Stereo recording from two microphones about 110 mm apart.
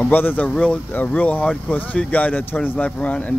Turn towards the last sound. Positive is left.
turn(degrees=15)  # may be behind; listen again after turning